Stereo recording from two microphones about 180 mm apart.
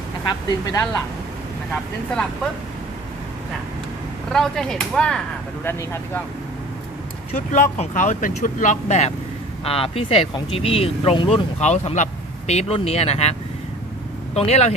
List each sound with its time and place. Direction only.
0.3 s speech: 20° left (ahead or behind)
4.3 s speech: 5° left (ahead or behind)
7.3 s speech: 40° left (ahead or behind)